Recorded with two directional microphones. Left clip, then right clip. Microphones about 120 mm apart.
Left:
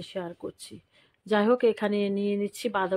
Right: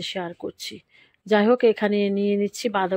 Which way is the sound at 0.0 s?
30° right (ahead or behind).